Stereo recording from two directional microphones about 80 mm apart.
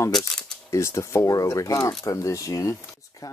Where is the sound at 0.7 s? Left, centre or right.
Left.